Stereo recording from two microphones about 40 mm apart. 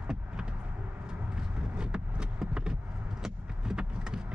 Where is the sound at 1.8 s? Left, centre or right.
Centre.